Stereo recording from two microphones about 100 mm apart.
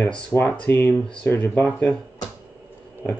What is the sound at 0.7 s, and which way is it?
Speech, 25° left (ahead or behind).